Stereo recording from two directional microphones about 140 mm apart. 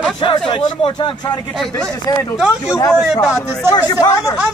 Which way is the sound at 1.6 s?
5° left (ahead or behind).